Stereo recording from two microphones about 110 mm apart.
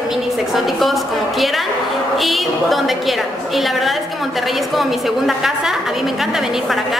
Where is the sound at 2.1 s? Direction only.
Centre (ahead or behind).